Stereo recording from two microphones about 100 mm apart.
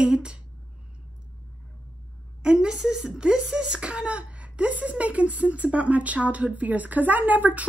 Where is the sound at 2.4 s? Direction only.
5° right (ahead or behind).